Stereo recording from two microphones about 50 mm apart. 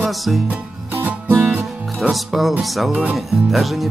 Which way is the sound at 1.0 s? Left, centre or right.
Right.